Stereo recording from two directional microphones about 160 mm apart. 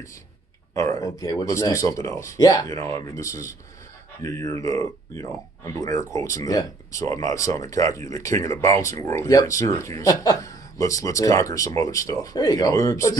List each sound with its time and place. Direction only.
0.7 s speech: 20° left (ahead or behind)